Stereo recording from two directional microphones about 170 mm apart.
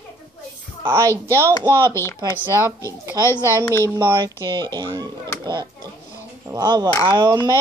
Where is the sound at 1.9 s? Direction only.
15° left (ahead or behind).